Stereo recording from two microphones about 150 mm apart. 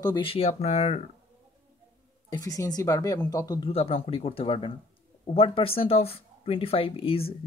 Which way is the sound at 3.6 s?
40° left (ahead or behind).